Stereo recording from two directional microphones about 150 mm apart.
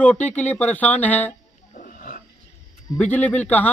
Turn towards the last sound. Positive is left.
turn(degrees=10)  # may be behind; listen again after turning